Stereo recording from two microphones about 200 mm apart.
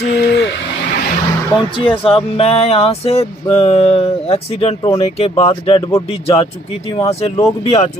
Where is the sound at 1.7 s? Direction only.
25° left (ahead or behind).